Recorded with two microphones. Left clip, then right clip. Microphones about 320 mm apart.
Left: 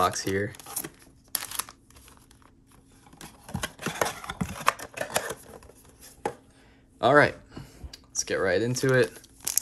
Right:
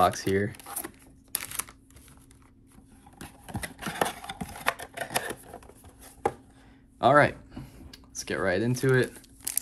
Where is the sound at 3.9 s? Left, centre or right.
Centre.